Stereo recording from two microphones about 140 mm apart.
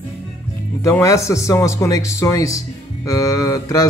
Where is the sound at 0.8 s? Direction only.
20° left (ahead or behind).